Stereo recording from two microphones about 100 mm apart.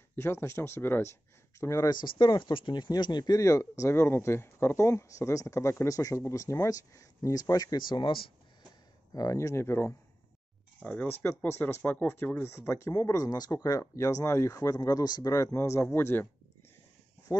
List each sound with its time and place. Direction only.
0.1 s speech: 25° left (ahead or behind)
1.9 s speech: 45° left (ahead or behind)
9.1 s speech: 35° left (ahead or behind)
10.8 s speech: 15° left (ahead or behind)